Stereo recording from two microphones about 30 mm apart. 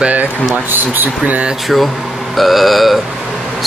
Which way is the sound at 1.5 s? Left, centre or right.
Centre.